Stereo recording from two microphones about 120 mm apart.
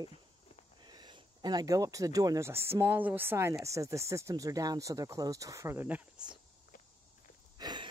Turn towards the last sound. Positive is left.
turn(degrees=-35)  # may be behind; listen again after turning